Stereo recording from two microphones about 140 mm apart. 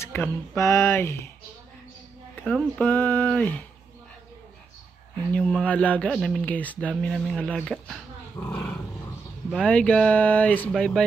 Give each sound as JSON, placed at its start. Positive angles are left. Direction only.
{"t": 0.0, "sound": "speech", "side_deg": 15}
{"t": 2.4, "sound": "speech", "side_deg": 10}
{"t": 5.3, "sound": "speech", "side_deg": 5}
{"t": 8.5, "sound": "roar", "side_deg": 10}
{"t": 9.5, "sound": "speech", "side_deg": 5}